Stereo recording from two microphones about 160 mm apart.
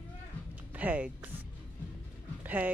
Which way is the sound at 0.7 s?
10° right (ahead or behind).